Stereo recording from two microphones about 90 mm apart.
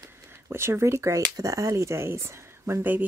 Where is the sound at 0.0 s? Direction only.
30° right (ahead or behind).